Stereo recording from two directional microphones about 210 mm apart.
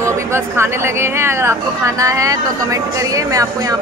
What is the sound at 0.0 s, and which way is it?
Speech, 15° right (ahead or behind).